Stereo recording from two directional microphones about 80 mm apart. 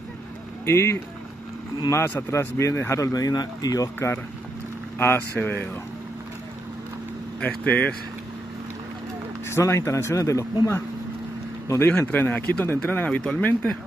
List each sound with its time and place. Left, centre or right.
0.7 s speech: left
3.1 s speech: left
4.9 s speech: left
7.4 s speech: left
9.5 s speech: left
11.7 s speech: left